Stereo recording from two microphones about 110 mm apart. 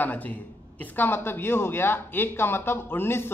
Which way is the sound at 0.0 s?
15° left (ahead or behind).